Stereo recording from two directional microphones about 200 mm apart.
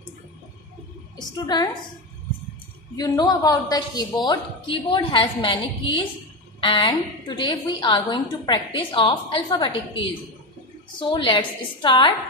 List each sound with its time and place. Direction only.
1.4 s a woman's voice: 20° left (ahead or behind)
3.0 s a woman's voice: 20° left (ahead or behind)